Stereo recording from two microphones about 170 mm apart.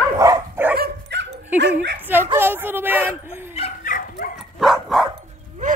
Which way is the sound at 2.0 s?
10° right (ahead or behind).